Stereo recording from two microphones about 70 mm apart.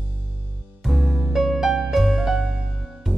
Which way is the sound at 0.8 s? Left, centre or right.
Centre.